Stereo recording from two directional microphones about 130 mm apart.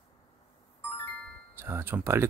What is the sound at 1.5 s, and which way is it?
Speech, 20° right (ahead or behind).